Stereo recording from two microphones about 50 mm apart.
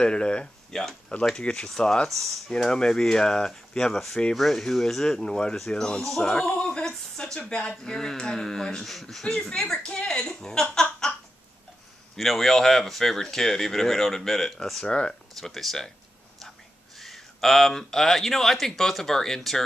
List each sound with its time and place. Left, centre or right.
0.0 s speech: centre
0.7 s speech: centre
1.4 s speech: centre
6.3 s a sound: centre
7.3 s speech: centre
10.4 s a sound: centre
12.2 s speech: centre
15.4 s speech: centre
17.0 s speech: centre